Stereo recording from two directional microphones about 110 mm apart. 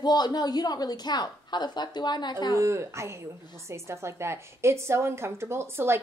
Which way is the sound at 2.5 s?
25° right (ahead or behind).